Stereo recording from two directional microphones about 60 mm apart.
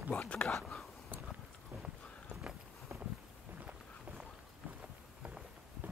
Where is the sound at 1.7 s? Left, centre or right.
Right.